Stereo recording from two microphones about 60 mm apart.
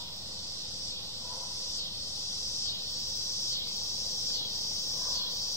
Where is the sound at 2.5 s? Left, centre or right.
Left.